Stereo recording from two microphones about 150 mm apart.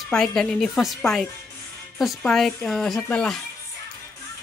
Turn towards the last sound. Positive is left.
turn(degrees=5)  # may be behind; listen again after turning